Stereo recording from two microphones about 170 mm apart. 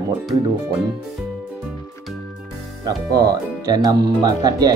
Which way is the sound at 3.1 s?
20° right (ahead or behind).